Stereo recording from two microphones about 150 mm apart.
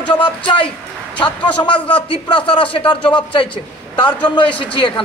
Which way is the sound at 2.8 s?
10° left (ahead or behind).